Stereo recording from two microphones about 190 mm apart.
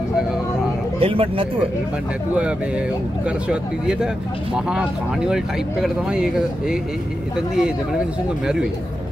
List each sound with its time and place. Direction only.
0.9 s speech: 30° right (ahead or behind)
3.3 s speech: 5° right (ahead or behind)